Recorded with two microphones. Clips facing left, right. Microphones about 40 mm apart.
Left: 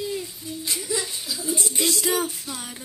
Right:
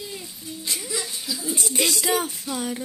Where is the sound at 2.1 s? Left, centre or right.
Centre.